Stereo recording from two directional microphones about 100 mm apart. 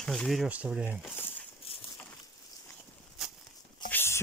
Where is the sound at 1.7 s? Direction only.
75° left (ahead or behind).